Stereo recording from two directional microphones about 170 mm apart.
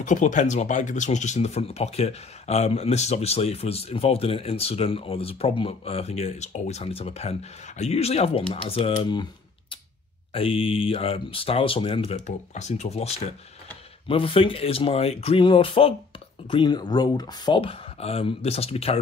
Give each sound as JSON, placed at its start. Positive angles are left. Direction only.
{"t": 0.0, "sound": "speech", "side_deg": 45}